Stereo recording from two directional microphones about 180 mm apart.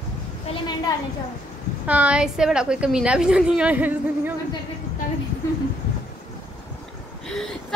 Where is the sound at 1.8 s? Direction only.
5° right (ahead or behind).